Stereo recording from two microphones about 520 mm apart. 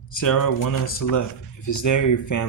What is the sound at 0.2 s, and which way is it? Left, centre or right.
Speech, left.